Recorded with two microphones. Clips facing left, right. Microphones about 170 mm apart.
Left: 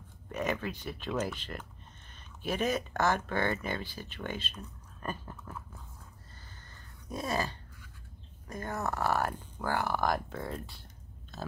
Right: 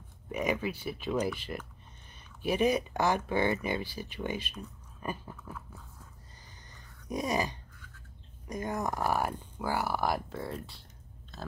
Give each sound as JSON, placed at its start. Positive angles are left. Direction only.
{"t": 0.3, "sound": "speech", "side_deg": -10}
{"t": 6.7, "sound": "a sound", "side_deg": -15}
{"t": 8.5, "sound": "speech", "side_deg": -15}